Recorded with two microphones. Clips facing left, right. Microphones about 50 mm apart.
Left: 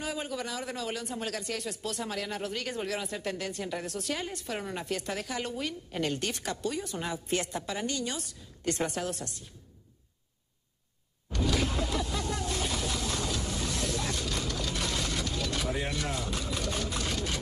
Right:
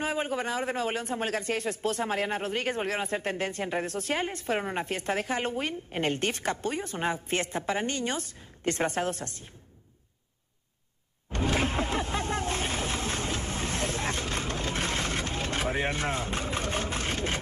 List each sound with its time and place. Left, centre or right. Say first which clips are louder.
0.0 s a man's voice: right 5 dB; right
11.3 s vehicle: right 2 dB; right